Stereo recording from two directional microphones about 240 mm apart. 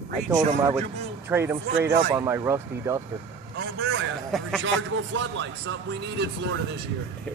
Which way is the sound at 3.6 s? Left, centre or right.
Right.